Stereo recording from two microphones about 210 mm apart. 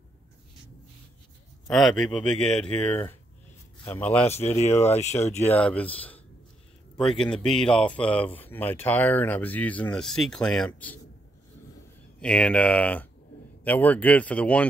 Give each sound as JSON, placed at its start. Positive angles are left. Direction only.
{"t": 1.7, "sound": "speech", "side_deg": 0}
{"t": 4.3, "sound": "speech", "side_deg": 30}
{"t": 5.3, "sound": "a man's voice", "side_deg": 10}
{"t": 12.2, "sound": "speech", "side_deg": 5}